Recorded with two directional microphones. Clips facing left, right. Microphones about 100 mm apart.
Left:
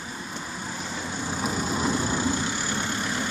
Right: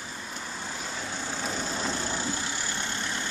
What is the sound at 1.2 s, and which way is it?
Vehicle, 15° left (ahead or behind).